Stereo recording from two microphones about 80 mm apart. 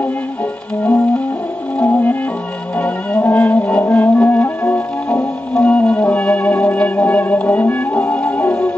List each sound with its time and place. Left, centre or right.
1.8 s music: left
5.5 s music: centre